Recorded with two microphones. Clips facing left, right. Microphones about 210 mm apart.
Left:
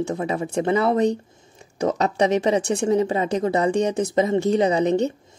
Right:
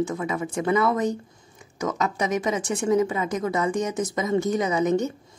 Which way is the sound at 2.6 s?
65° left (ahead or behind).